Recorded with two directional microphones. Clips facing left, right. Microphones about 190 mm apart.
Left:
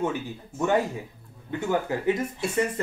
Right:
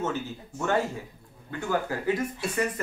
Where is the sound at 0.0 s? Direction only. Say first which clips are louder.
Left 2 dB; 15° left (ahead or behind).